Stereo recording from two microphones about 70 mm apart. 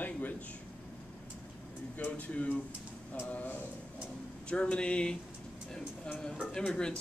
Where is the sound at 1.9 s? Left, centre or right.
Left.